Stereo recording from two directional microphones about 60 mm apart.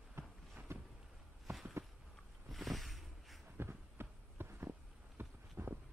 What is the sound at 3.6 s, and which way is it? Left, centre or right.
Heart sounds, right.